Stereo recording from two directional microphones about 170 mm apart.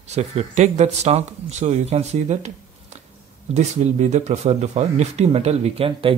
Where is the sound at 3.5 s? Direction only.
40° right (ahead or behind).